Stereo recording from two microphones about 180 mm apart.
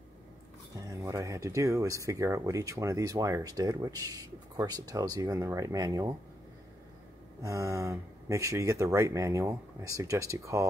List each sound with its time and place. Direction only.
0.8 s speech: 15° right (ahead or behind)
7.4 s speech: 20° right (ahead or behind)